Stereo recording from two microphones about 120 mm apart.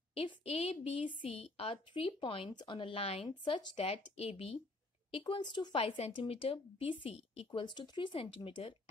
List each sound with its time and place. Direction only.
0.1 s speech: 50° left (ahead or behind)
3.3 s speech: 40° left (ahead or behind)